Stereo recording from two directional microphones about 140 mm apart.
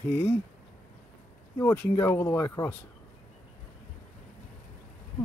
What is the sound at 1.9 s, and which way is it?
Speech, 20° left (ahead or behind).